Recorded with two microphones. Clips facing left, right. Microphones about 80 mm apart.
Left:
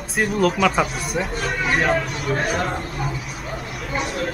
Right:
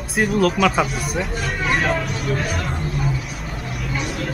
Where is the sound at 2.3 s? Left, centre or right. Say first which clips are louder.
Left 2 dB; left.